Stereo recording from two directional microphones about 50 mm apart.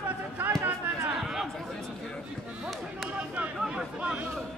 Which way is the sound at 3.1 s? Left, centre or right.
Right.